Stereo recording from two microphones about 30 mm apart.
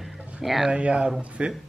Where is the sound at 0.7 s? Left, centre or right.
Right.